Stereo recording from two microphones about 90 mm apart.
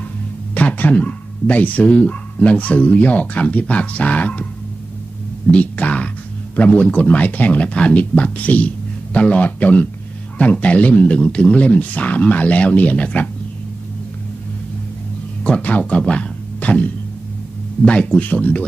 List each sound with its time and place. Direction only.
0.6 s speech: 15° left (ahead or behind)
5.5 s speech: 15° left (ahead or behind)
15.4 s speech: 15° left (ahead or behind)